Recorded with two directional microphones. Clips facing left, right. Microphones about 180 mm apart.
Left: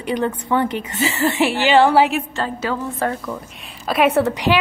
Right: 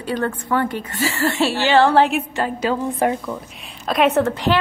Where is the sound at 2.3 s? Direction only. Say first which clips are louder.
Right 2 dB; 15° right (ahead or behind).